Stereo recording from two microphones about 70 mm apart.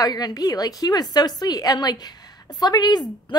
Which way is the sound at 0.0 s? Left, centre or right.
Left.